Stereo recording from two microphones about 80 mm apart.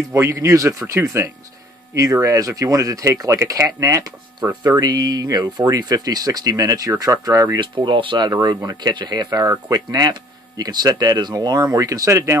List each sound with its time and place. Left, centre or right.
0.1 s speech: right
4.6 s speech: right
7.5 s speech: right
8.3 s speech: right